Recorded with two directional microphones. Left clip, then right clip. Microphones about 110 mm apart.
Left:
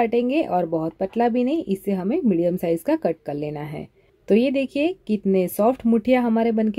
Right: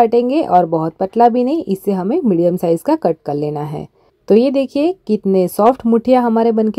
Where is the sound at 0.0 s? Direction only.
30° right (ahead or behind).